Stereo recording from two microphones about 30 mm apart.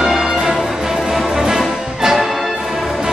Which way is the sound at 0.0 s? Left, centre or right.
Centre.